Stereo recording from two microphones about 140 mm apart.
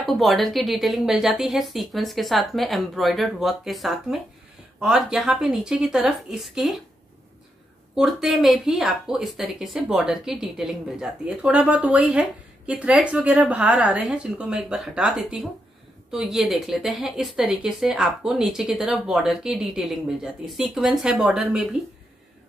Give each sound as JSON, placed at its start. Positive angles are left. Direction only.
{"t": 0.0, "sound": "speech", "side_deg": 0}
{"t": 7.9, "sound": "speech", "side_deg": 0}